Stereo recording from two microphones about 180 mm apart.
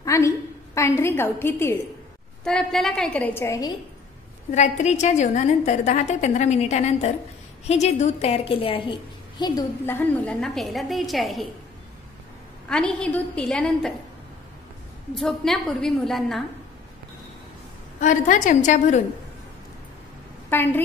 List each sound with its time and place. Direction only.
0.0 s a sound: 15° left (ahead or behind)
0.7 s a woman's voice: 15° left (ahead or behind)
2.4 s a woman's voice: 5° left (ahead or behind)
4.5 s a woman's voice: 40° left (ahead or behind)
9.4 s a woman's voice: 15° left (ahead or behind); by 11.4 s centre (ahead or behind)
12.6 s a woman's voice: 5° left (ahead or behind)
15.1 s a woman's voice: centre (ahead or behind)
18.0 s a woman's voice: 45° left (ahead or behind)
20.4 s a woman's voice: 10° left (ahead or behind)